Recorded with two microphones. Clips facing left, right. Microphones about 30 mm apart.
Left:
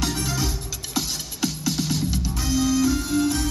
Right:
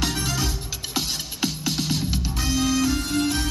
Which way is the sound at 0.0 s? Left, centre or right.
Centre.